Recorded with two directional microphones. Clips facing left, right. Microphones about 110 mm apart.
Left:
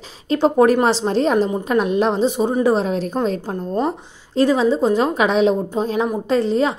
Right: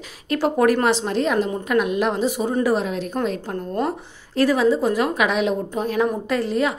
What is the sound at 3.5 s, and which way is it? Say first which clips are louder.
A woman's voice: left 3 dB; 20° left (ahead or behind).